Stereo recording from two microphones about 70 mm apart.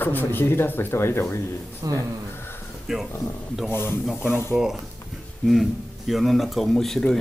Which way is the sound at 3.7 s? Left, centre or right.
Left.